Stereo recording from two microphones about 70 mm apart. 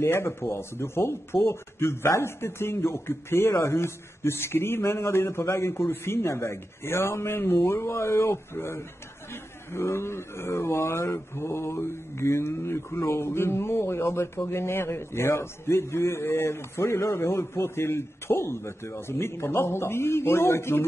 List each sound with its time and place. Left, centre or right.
0.0 s speech: left